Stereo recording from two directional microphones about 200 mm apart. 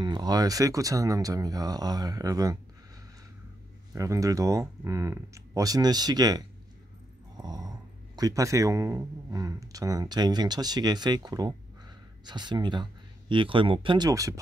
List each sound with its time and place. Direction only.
0.0 s speech: 20° right (ahead or behind)
3.9 s speech: 15° right (ahead or behind)
7.3 s dog: 20° right (ahead or behind)
8.2 s speech: 15° right (ahead or behind)